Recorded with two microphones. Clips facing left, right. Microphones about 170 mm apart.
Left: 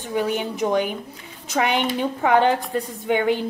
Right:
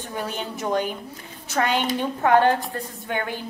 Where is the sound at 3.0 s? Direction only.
15° left (ahead or behind).